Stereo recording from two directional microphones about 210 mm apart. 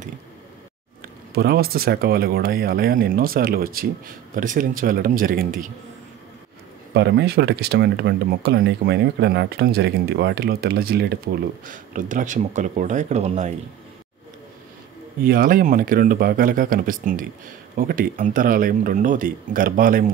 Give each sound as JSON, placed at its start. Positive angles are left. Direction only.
{"t": 1.3, "sound": "speech", "side_deg": -45}
{"t": 6.9, "sound": "speech", "side_deg": -55}
{"t": 11.7, "sound": "speech", "side_deg": -40}
{"t": 15.2, "sound": "speech", "side_deg": -45}